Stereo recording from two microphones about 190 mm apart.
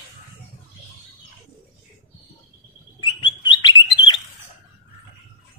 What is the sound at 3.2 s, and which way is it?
Bird, 25° left (ahead or behind).